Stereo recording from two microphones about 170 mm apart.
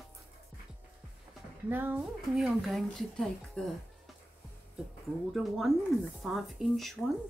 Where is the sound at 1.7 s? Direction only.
10° right (ahead or behind).